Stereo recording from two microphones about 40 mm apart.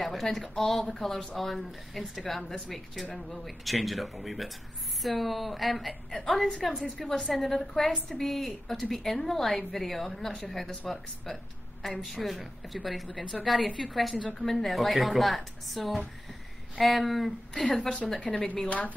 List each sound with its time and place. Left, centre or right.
0.0 s a woman's voice: centre
12.1 s speech: centre
17.6 s a woman's voice: centre
18.7 s speech: left